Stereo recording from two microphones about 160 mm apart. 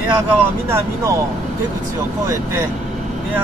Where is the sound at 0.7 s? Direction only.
15° right (ahead or behind).